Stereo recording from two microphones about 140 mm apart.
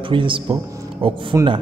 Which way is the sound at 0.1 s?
40° right (ahead or behind).